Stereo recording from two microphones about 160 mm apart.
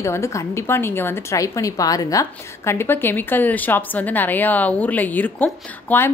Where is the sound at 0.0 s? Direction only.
20° left (ahead or behind).